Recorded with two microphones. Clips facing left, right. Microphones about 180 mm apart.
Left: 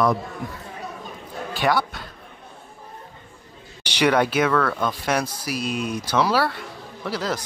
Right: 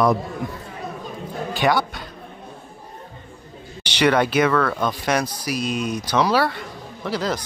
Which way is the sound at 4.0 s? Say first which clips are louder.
Right 2 dB; 5° left (ahead or behind).